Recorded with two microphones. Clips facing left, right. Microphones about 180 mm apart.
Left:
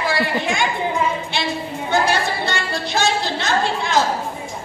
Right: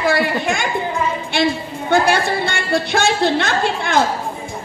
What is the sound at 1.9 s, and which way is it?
A woman's voice, 55° right (ahead or behind).